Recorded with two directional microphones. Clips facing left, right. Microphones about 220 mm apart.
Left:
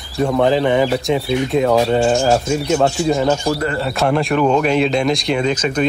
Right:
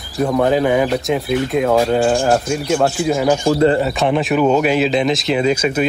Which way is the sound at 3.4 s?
25° right (ahead or behind).